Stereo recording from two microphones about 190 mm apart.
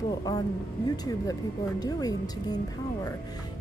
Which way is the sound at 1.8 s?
20° left (ahead or behind).